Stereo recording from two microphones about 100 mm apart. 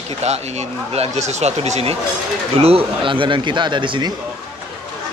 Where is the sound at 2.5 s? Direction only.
80° right; by 4.1 s 55° right (ahead or behind).